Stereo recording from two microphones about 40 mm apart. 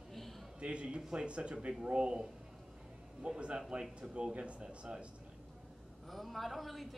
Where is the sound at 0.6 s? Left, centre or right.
Right.